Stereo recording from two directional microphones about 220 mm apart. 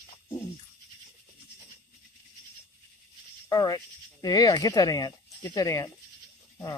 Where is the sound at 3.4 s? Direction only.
15° left (ahead or behind).